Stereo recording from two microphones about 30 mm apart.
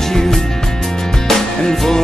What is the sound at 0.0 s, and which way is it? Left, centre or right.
Music, centre.